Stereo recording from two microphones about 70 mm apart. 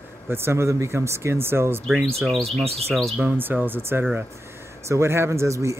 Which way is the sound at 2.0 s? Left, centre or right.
Centre.